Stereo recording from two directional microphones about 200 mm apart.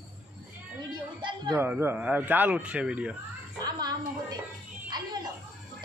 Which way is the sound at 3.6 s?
20° right (ahead or behind).